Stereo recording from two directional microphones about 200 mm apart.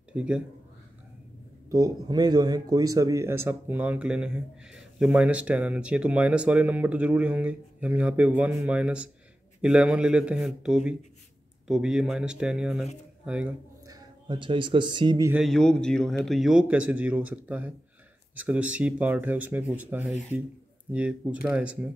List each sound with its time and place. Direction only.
0.1 s speech: 5° right (ahead or behind)
1.7 s a man's voice: 20° right (ahead or behind)
13.8 s a man's voice: 25° right (ahead or behind)
15.3 s a man's voice: centre (ahead or behind)